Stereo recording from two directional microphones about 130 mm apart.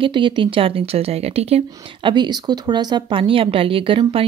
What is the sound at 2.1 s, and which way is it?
Speech, 35° right (ahead or behind).